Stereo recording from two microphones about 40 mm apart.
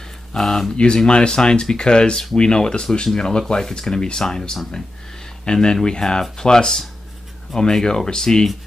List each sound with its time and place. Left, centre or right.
0.4 s speech: centre
0.9 s speech: left